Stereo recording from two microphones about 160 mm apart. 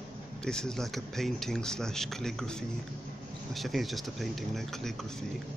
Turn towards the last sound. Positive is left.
turn(degrees=0)  # may be behind; listen again after turning